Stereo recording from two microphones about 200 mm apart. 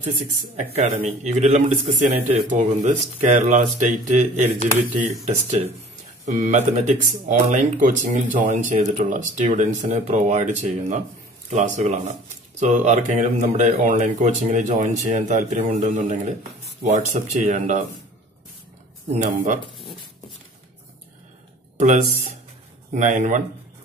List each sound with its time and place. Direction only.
0.0 s speech: 35° right (ahead or behind)
5.2 s speech: 35° right (ahead or behind)
19.1 s speech: 40° right (ahead or behind)
21.7 s speech: 40° right (ahead or behind)